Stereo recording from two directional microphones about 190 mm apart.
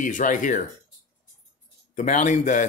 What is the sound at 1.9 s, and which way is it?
Speech, 40° left (ahead or behind).